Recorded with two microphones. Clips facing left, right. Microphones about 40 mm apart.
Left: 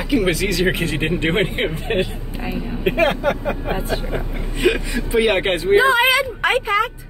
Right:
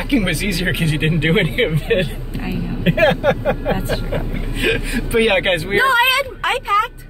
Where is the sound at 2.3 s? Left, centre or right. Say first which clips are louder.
Right 2 dB; centre.